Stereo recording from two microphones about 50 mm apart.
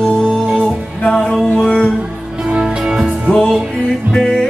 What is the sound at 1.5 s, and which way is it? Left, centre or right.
Music, left.